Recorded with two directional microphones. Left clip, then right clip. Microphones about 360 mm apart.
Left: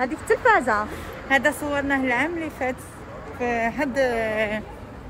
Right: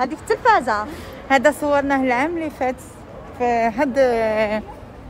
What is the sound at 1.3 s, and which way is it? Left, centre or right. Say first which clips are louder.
Speech: right 5 dB; centre.